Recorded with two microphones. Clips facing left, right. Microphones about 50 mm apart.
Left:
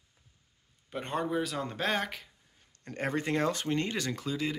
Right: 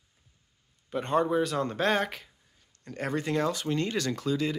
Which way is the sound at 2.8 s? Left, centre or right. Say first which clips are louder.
Right 1 dB; left.